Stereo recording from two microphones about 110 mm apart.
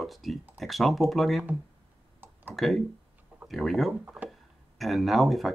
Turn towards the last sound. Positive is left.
turn(degrees=0)  # may be behind; listen again after turning